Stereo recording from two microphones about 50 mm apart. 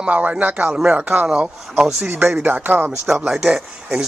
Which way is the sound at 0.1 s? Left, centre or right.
Right.